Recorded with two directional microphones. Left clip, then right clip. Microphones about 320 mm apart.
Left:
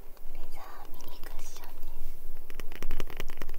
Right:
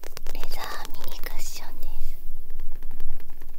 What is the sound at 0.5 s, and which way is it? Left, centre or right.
Whispering, right.